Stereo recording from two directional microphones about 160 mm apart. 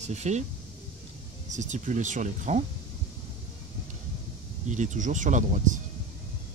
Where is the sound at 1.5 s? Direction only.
50° right (ahead or behind).